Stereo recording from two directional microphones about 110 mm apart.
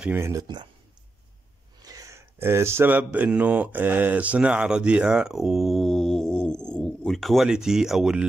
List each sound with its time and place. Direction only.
0.2 s speech: 30° right (ahead or behind)
1.8 s speech: 30° right (ahead or behind); by 8.3 s 5° right (ahead or behind)